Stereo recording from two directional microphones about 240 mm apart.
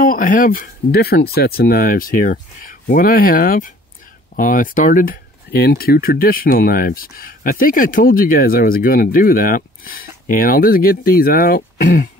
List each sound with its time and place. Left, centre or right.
0.0 s speech: left